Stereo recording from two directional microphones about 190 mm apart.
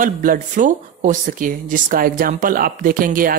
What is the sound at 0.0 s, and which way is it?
Speech, 45° right (ahead or behind).